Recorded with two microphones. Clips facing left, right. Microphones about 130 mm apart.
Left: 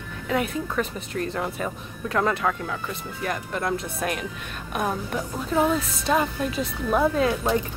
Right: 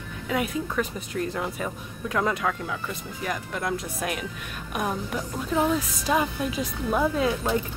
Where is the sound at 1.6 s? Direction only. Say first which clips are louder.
Left 2 dB; 50° left (ahead or behind).